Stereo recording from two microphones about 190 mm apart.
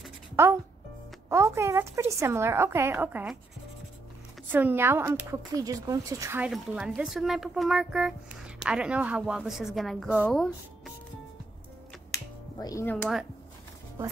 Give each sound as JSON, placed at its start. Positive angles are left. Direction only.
{"t": 1.3, "sound": "a woman's voice", "side_deg": -15}
{"t": 4.5, "sound": "a woman's voice", "side_deg": -10}
{"t": 6.5, "sound": "speech", "side_deg": 0}
{"t": 12.5, "sound": "speech", "side_deg": 15}
{"t": 12.9, "sound": "speech", "side_deg": 0}